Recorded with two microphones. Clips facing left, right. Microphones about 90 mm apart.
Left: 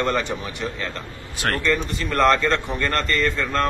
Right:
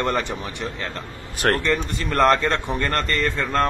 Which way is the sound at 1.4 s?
40° right (ahead or behind).